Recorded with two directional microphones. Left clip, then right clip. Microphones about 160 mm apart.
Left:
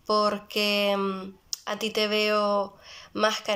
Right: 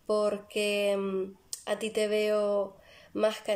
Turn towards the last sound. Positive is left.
turn(degrees=-25)  # may be behind; listen again after turning